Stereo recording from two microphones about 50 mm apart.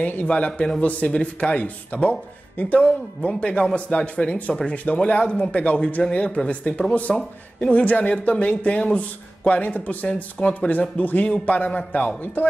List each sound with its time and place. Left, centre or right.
0.0 s speech: left
7.1 s speech: centre
7.7 s speech: left